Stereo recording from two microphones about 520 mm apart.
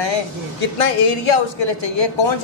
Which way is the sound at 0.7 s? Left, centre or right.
Left.